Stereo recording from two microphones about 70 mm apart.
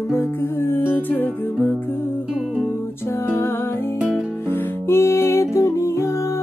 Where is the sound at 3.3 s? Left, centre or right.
Left.